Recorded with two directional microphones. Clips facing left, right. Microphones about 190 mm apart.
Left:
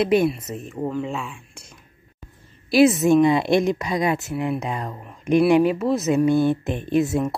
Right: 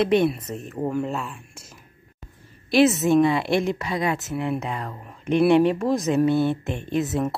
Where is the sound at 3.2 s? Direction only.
20° left (ahead or behind).